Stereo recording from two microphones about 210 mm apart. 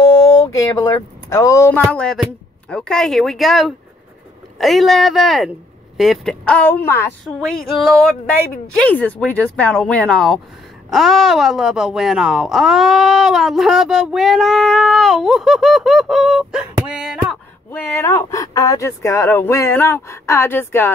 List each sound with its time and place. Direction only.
0.0 s speech: 15° left (ahead or behind)
7.3 s speech: centre (ahead or behind)
17.6 s speech: 10° left (ahead or behind)